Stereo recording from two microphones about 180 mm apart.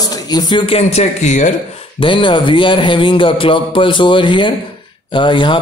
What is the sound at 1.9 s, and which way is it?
A man's voice, 25° left (ahead or behind).